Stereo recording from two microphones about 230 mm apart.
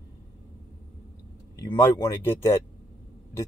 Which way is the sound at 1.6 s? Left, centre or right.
Centre.